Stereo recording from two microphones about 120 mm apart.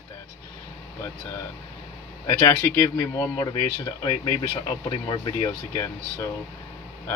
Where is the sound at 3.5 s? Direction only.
40° left (ahead or behind).